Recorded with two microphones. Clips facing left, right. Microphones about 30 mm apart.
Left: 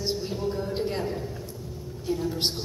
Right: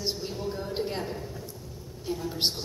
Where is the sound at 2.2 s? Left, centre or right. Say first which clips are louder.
Right 1 dB; centre.